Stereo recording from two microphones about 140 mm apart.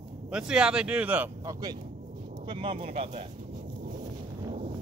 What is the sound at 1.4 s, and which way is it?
Speech, 25° right (ahead or behind).